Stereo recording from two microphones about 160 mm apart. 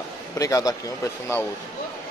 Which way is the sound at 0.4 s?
20° left (ahead or behind).